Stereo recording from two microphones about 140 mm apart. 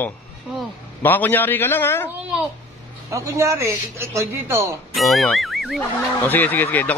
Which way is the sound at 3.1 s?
20° right (ahead or behind).